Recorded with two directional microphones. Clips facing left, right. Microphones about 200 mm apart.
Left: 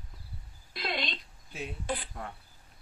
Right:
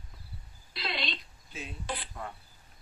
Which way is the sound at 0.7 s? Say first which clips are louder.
Left 2 dB; 50° left (ahead or behind).